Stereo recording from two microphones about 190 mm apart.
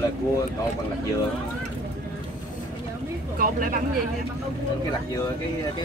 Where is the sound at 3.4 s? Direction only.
45° right (ahead or behind).